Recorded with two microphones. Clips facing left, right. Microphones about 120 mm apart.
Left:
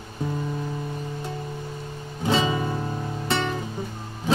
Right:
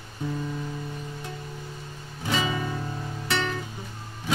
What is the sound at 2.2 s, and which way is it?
Music, 30° left (ahead or behind).